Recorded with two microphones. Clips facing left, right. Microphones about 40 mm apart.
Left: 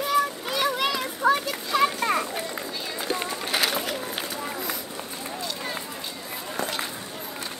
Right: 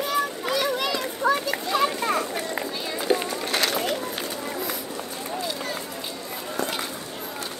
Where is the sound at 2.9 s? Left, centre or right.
Centre.